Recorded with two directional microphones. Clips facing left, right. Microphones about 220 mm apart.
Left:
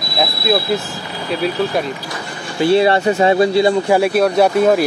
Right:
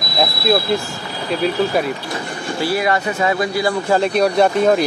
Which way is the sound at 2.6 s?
25° left (ahead or behind).